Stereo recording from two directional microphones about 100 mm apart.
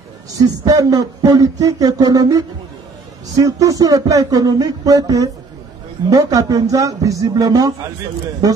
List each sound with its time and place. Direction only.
0.3 s speech: 35° right (ahead or behind)